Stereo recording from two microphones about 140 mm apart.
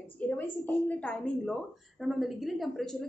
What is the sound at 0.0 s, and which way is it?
A woman's voice, 15° left (ahead or behind).